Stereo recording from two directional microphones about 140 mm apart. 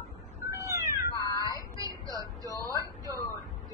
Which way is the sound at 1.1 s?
25° left (ahead or behind).